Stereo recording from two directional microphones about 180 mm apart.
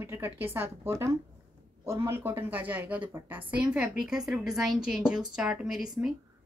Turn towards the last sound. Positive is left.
turn(degrees=-5)  # may be behind; listen again after turning